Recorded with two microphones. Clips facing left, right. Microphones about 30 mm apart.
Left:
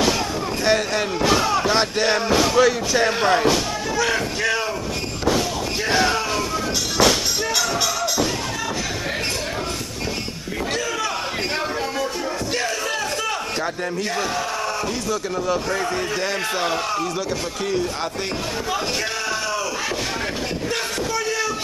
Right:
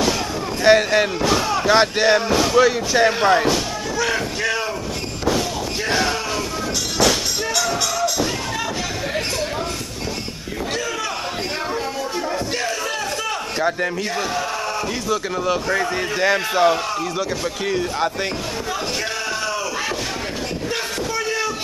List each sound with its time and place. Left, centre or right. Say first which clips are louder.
0.7 s speech: right 7 dB; centre
1.2 s a sound: left 1 dB; centre
1.7 s speech: right 4 dB; centre
5.9 s a sound: left 2 dB; centre
7.0 s music: left 1 dB; centre
15.4 s speech: right 2 dB; centre
16.5 s speech: right 8 dB; centre
17.6 s speech: right 3 dB; centre